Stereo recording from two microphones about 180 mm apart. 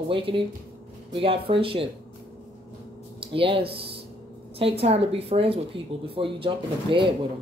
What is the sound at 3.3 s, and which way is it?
Speech, 30° right (ahead or behind).